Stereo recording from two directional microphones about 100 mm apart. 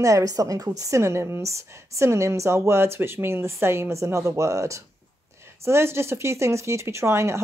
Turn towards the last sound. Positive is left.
turn(degrees=-30)  # may be behind; listen again after turning